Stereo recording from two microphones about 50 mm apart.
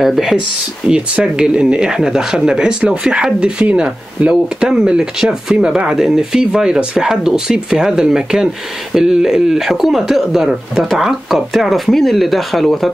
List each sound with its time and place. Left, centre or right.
0.0 s speech: centre
0.8 s speech: centre